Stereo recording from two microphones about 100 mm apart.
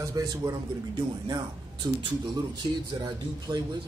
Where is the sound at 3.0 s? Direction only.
45° right (ahead or behind).